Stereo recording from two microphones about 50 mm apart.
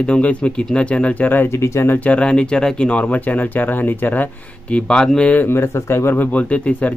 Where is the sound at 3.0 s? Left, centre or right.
Left.